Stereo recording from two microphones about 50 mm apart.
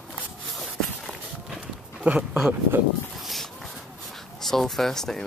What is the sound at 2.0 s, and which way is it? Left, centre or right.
Dog, right.